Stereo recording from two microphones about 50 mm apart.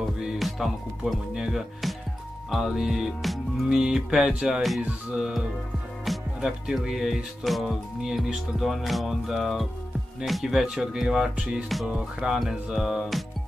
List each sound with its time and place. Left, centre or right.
0.4 s speech: centre
3.6 s speech: centre
6.0 s speech: centre